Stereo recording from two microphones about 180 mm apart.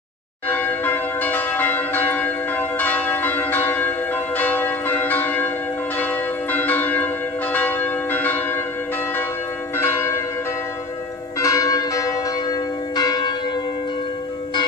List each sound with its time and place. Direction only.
0.5 s church bell: 10° left (ahead or behind)
9.8 s church bell: 15° left (ahead or behind)
11.3 s church bell: 15° left (ahead or behind)